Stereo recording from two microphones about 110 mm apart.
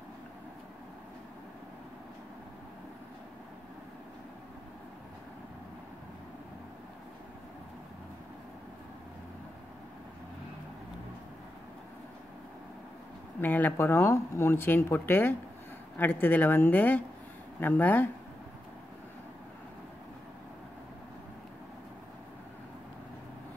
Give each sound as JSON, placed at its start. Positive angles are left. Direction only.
{"t": 13.4, "sound": "a woman's voice", "side_deg": 15}